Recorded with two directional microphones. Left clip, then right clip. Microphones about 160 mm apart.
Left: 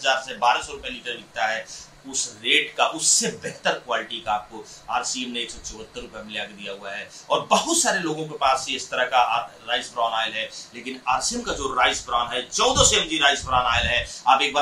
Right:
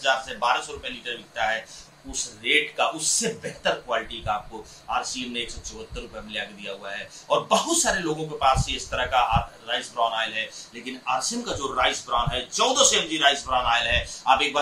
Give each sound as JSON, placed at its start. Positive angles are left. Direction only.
{"t": 0.0, "sound": "a man's voice", "side_deg": 0}